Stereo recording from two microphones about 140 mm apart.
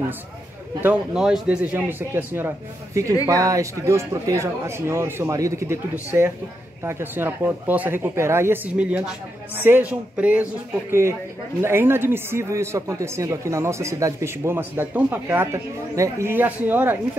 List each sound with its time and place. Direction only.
0.8 s a man's voice: 5° right (ahead or behind)